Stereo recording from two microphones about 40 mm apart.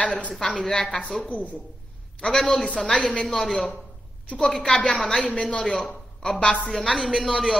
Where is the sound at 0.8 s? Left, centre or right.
Left.